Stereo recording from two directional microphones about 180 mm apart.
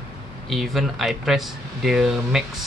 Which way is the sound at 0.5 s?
Centre (ahead or behind).